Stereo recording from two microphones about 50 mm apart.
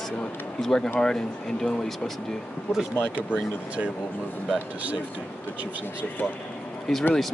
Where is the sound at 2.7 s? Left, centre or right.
Centre.